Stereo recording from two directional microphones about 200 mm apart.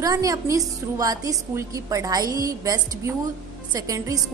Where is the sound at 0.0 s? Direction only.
15° right (ahead or behind).